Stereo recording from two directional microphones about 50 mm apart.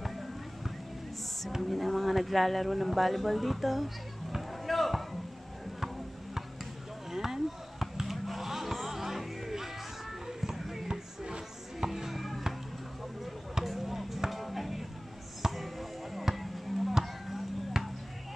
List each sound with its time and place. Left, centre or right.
1.5 s a sound: centre
7.1 s basketball bounce: centre
10.2 s music: centre
13.2 s chop: centre
15.4 s music: centre